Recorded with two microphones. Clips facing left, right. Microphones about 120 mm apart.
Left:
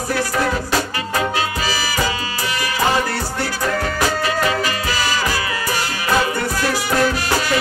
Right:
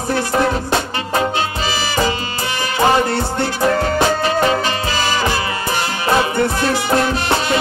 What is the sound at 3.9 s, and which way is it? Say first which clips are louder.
Music: right 4 dB; 25° right (ahead or behind).